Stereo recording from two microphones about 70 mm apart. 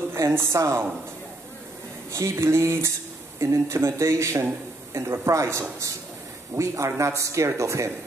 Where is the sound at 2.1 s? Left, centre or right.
Right.